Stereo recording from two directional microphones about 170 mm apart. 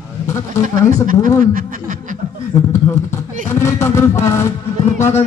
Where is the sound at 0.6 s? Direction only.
50° right (ahead or behind).